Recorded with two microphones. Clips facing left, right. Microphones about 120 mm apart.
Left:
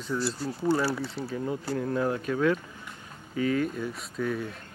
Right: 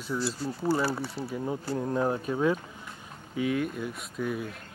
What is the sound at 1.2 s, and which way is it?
Speech, 20° right (ahead or behind).